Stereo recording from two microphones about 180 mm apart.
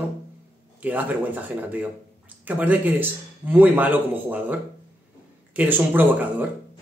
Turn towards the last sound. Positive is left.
turn(degrees=-10)  # may be behind; listen again after turning